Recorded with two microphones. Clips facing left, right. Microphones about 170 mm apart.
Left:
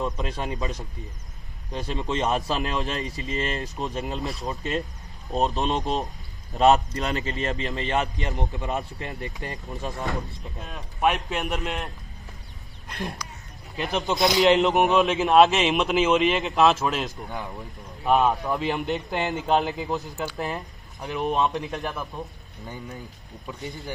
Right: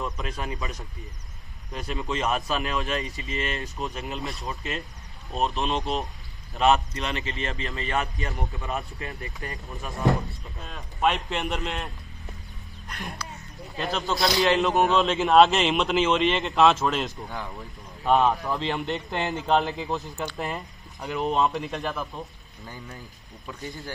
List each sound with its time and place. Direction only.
0.2 s speech: 30° left (ahead or behind)
4.2 s a man's voice: centre (ahead or behind)
4.5 s a man's voice: 40° left (ahead or behind); by 11.9 s 5° left (ahead or behind)
13.2 s a sound: 15° left (ahead or behind)
13.7 s a man's voice: 20° left (ahead or behind)
15.1 s a man's voice: centre (ahead or behind)
21.7 s a man's voice: 15° left (ahead or behind)
23.4 s a man's voice: 20° left (ahead or behind)